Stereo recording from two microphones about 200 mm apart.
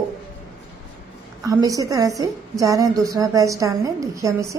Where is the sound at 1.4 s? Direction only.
15° right (ahead or behind).